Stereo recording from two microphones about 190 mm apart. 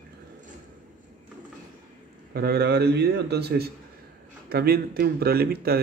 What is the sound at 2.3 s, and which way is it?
Speech, 55° right (ahead or behind).